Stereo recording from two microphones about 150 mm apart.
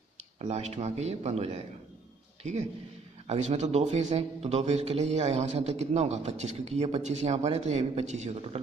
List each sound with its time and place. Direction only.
0.4 s a man's voice: 50° right (ahead or behind)
3.3 s a man's voice: 50° right (ahead or behind)